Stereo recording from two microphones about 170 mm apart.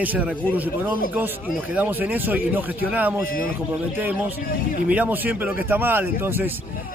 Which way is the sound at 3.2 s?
55° left (ahead or behind).